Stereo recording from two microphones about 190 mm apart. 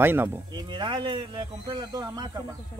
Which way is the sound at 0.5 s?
25° right (ahead or behind).